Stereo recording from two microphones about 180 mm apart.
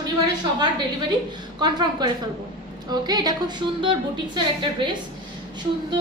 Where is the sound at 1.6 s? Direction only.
25° right (ahead or behind).